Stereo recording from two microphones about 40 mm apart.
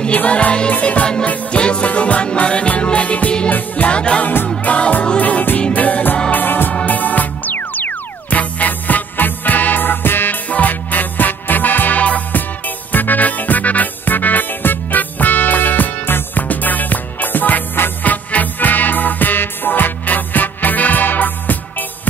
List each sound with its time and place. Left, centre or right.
0.1 s music: left
6.3 s music: left
6.9 s music: left
10.5 s music: left
16.4 s music: left
18.0 s music: left